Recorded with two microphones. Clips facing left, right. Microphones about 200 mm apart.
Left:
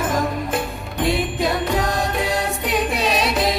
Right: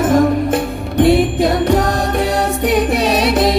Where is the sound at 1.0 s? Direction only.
60° right (ahead or behind).